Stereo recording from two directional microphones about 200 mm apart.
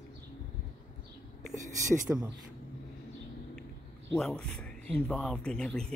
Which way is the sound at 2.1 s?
Centre (ahead or behind).